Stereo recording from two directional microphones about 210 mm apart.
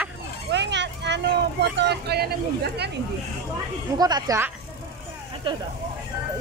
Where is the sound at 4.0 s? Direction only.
20° right (ahead or behind).